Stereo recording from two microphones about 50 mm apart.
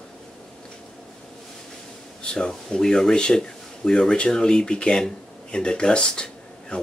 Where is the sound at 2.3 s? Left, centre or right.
Centre.